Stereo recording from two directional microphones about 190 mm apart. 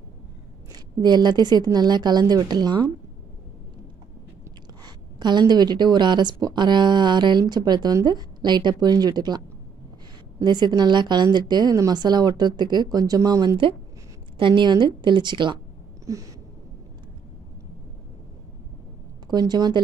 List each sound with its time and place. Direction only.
1.0 s a woman's voice: 20° right (ahead or behind)
4.8 s a woman's voice: 20° right (ahead or behind)
10.4 s a woman's voice: 20° right (ahead or behind)
16.1 s a sound: 15° right (ahead or behind)
19.2 s a woman's voice: 20° right (ahead or behind)